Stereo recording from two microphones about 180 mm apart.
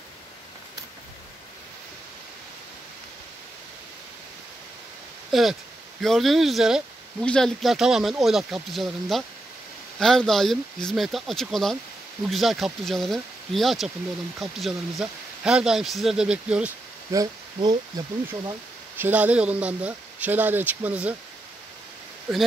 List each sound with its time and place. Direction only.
5.3 s speech: centre (ahead or behind)
17.1 s speech: 20° right (ahead or behind)
18.9 s speech: 10° right (ahead or behind)